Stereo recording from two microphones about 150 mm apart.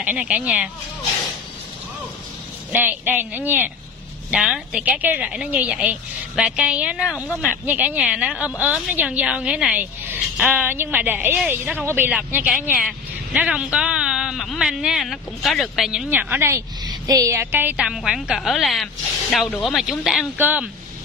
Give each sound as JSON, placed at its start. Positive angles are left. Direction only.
{"t": 0.0, "sound": "a woman's voice", "side_deg": -10}
{"t": 2.7, "sound": "a woman's voice", "side_deg": -10}